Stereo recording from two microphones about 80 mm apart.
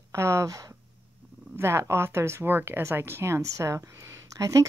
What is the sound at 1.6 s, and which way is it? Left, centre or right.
Speech, right.